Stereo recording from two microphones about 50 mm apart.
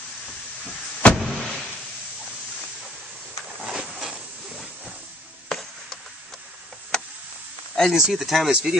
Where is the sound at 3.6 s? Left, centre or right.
Centre.